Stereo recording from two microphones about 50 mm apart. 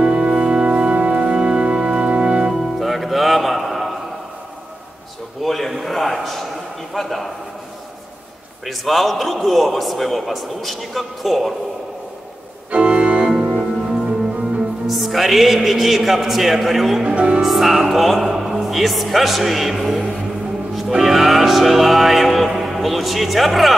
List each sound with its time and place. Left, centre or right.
0.0 s music: centre
2.5 s music: centre
5.4 s a sound: centre
8.6 s a man's voice: centre
12.7 s organ: right
13.2 s music: centre
14.9 s a man's voice: centre
17.1 s speech: right
17.4 s a man's voice: centre
20.9 s music: centre
22.5 s a man's voice: centre